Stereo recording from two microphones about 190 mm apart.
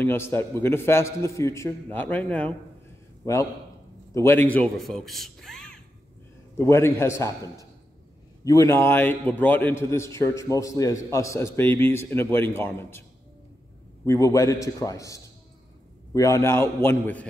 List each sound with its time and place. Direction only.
0.0 s a man's voice: 10° left (ahead or behind)
6.6 s a man's voice: 15° left (ahead or behind)
14.0 s a man's voice: 15° left (ahead or behind)